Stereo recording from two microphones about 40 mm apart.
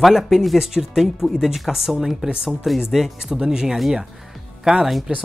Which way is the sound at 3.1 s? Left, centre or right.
Centre.